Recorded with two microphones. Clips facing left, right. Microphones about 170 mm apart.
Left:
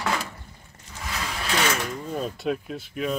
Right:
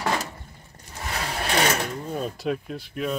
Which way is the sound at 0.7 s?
35° right (ahead or behind).